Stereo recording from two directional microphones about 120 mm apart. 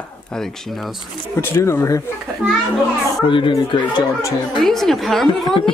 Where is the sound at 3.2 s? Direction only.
45° left (ahead or behind).